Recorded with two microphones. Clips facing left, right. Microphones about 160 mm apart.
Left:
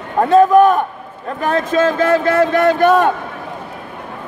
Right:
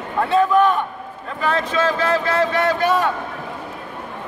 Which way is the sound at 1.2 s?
45° left (ahead or behind).